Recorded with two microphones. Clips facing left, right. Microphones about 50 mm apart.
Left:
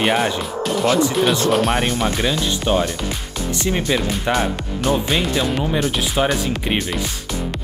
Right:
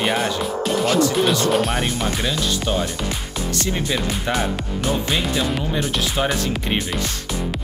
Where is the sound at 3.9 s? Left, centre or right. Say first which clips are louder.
Left 4 dB; centre.